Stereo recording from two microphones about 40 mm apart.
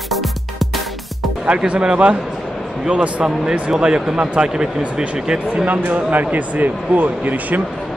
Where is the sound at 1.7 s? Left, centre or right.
Right.